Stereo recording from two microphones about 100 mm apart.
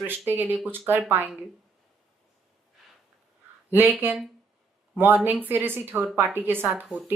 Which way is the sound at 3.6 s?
20° right (ahead or behind).